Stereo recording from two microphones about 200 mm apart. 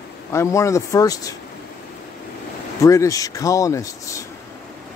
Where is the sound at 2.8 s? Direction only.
15° left (ahead or behind).